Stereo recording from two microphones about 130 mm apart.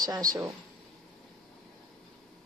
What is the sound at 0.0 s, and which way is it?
Speech, 30° right (ahead or behind).